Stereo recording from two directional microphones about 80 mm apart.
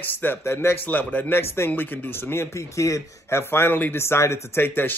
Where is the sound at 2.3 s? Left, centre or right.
Left.